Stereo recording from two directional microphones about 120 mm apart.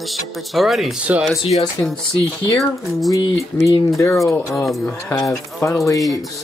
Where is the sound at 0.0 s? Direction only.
Centre (ahead or behind).